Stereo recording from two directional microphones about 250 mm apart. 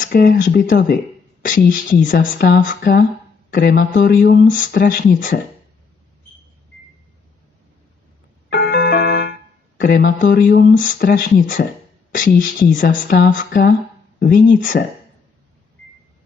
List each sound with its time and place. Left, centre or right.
0.0 s speech: left
8.5 s a sound: left
12.3 s speech: left